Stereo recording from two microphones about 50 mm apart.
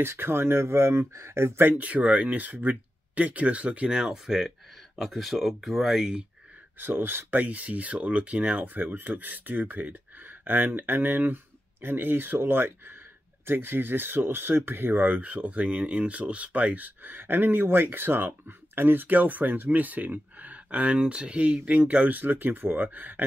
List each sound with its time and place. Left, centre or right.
0.0 s speech: right
1.6 s speech: right
3.9 s speech: centre
4.9 s speech: centre
6.8 s speech: right
7.3 s speech: right